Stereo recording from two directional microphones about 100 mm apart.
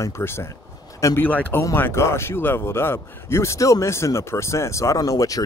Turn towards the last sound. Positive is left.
turn(degrees=35)  # may be behind; listen again after turning